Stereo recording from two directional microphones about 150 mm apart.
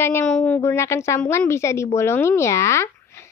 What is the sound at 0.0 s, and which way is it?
A woman's voice, 15° left (ahead or behind).